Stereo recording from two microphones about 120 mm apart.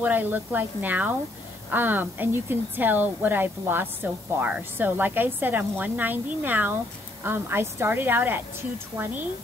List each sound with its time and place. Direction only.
0.0 s speech: 15° right (ahead or behind)